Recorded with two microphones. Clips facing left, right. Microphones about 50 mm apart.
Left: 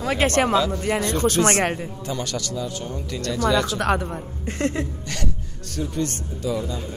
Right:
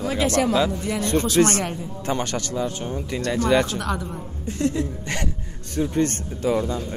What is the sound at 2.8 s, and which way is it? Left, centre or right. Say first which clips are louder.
Speech: right 2 dB; right.